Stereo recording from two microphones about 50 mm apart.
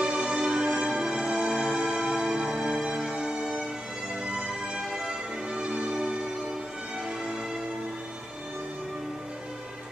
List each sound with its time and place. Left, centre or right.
0.0 s music: centre